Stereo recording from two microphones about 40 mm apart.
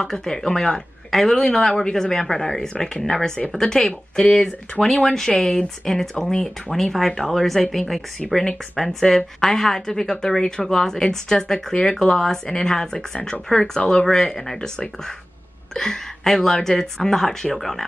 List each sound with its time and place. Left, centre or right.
0.0 s a woman's voice: centre
4.8 s a woman's voice: centre
15.7 s a woman's voice: centre